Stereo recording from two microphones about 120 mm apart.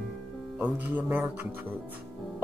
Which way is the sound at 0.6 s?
15° right (ahead or behind).